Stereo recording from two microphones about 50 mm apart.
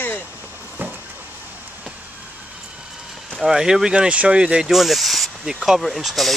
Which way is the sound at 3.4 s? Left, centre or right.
Centre.